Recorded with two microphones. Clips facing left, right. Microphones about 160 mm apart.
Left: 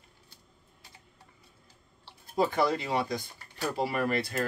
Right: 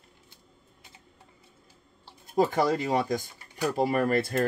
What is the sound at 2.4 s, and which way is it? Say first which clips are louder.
Speech: right 3 dB; 45° right (ahead or behind).